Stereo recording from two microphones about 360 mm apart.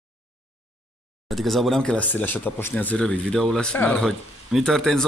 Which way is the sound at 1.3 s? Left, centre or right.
Centre.